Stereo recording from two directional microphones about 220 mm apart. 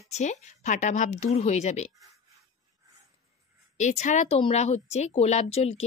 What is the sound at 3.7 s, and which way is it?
Speech, 35° left (ahead or behind).